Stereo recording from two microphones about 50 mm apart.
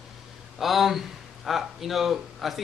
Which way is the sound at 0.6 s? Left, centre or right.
Centre.